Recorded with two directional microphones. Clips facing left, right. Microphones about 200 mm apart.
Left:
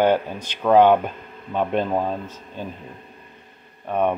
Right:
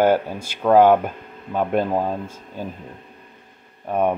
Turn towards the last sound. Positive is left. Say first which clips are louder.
# right 1 dB
turn(degrees=-10)  # may be behind; listen again after turning